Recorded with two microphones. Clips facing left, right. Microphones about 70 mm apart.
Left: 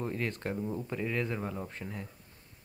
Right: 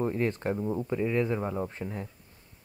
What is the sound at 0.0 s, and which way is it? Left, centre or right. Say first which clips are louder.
Speech: right 6 dB; right.